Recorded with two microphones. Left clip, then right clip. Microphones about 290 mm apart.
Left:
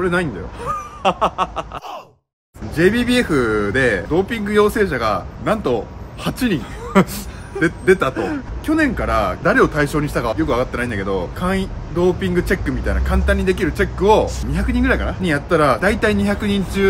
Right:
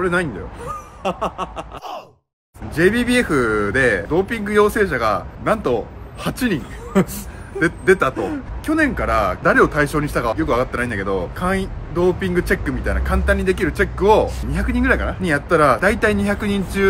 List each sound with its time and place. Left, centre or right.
0.0 s a man's voice: centre
0.7 s a sound: centre
2.7 s a man's voice: centre